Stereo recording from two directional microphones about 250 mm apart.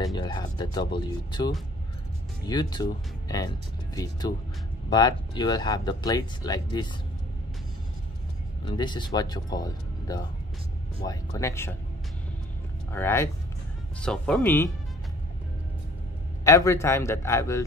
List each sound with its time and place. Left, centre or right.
0.0 s speech: centre
8.6 s speech: centre
12.9 s speech: centre
16.4 s speech: centre